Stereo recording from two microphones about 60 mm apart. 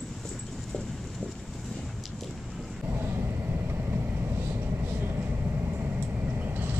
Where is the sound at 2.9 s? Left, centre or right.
Right.